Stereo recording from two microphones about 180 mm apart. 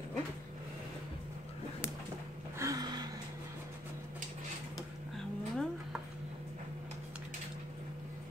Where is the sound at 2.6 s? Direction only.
20° right (ahead or behind).